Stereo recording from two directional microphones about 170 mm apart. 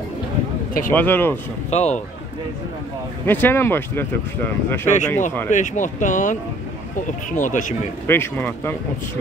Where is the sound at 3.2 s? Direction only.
10° left (ahead or behind).